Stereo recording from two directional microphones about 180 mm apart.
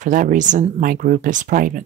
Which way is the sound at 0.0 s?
45° right (ahead or behind).